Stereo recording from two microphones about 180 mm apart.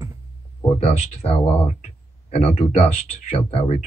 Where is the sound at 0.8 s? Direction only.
35° left (ahead or behind).